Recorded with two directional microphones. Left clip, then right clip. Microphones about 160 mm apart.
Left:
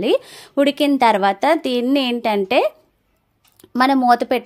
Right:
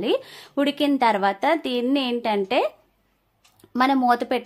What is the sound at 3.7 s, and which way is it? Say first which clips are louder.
Speech: left 5 dB; 35° left (ahead or behind).